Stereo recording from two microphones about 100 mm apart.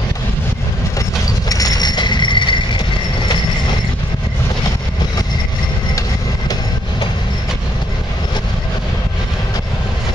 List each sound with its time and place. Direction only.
1.5 s train: 40° left (ahead or behind)